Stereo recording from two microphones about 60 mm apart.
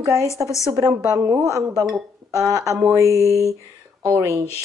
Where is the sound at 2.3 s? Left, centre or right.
Right.